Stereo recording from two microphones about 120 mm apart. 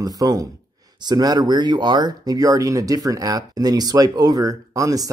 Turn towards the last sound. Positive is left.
turn(degrees=-30)  # may be behind; listen again after turning